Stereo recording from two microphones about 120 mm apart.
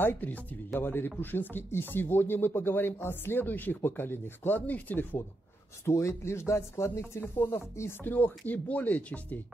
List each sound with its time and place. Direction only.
0.0 s speech: 15° left (ahead or behind)